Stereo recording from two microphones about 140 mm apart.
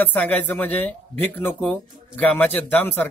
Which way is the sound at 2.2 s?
10° left (ahead or behind).